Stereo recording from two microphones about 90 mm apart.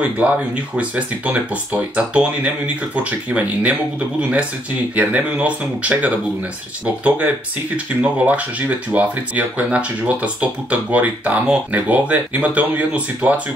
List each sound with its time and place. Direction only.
0.7 s speech: 15° right (ahead or behind)